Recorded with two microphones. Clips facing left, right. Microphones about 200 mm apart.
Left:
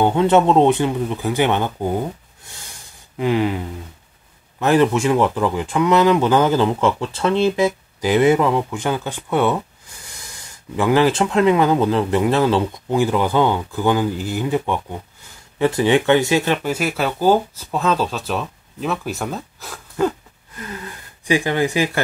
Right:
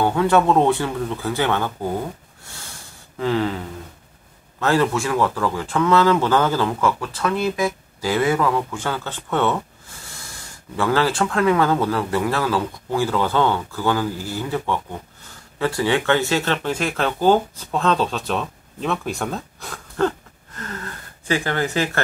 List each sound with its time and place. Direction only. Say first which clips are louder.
0.0 s speech: left 3 dB; 20° left (ahead or behind)
2.4 s a sound: right 2 dB; 15° left (ahead or behind)
4.6 s speech: left 4 dB; 20° left (ahead or behind)